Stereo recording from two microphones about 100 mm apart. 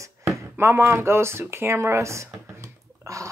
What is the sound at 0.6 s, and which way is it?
Speech, 25° right (ahead or behind).